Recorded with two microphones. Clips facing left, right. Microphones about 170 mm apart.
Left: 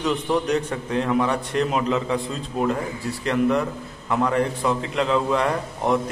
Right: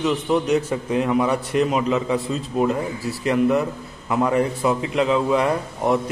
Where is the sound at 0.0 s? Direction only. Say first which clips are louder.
Right 2 dB; 5° right (ahead or behind).